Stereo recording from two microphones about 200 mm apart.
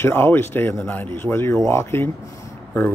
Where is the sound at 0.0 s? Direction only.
10° left (ahead or behind).